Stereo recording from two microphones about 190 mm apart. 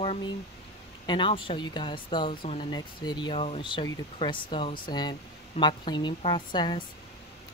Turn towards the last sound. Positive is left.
turn(degrees=25)  # may be behind; listen again after turning